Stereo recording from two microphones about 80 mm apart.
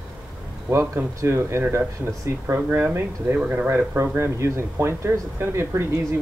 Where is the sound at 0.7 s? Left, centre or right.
Right.